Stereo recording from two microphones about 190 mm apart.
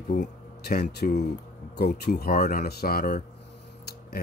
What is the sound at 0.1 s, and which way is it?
Speech, 55° left (ahead or behind).